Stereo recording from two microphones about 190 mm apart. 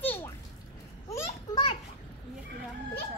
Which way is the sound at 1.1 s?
15° left (ahead or behind).